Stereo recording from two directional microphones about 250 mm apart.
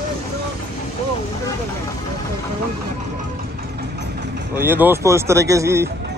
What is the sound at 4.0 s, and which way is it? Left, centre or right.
Vehicle, right.